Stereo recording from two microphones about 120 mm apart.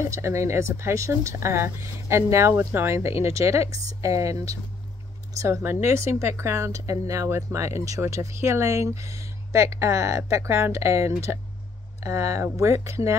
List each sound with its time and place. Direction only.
0.0 s speech: 25° right (ahead or behind)